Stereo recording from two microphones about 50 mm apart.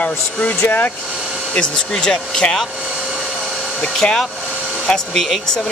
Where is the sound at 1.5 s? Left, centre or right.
Centre.